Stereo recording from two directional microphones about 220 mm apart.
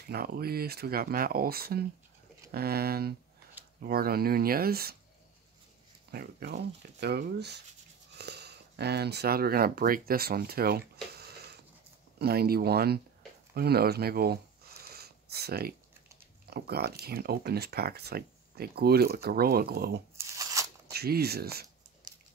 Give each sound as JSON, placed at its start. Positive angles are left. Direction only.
{"t": 0.0, "sound": "speech", "side_deg": -45}
{"t": 6.1, "sound": "speech", "side_deg": -45}
{"t": 12.2, "sound": "speech", "side_deg": -45}
{"t": 13.6, "sound": "a sound", "side_deg": -45}
{"t": 16.4, "sound": "speech", "side_deg": -45}
{"t": 20.3, "sound": "a sound", "side_deg": -15}
{"t": 20.9, "sound": "speech", "side_deg": -45}